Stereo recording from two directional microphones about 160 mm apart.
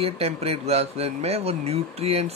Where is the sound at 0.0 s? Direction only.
40° right (ahead or behind).